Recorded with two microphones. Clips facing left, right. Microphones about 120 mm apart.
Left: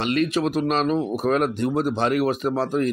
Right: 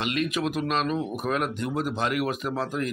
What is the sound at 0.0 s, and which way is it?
Speech, 40° left (ahead or behind).